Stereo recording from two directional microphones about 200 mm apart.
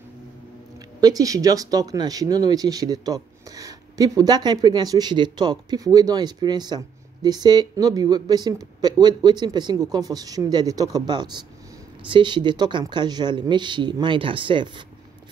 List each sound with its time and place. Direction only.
1.0 s speech: 15° right (ahead or behind)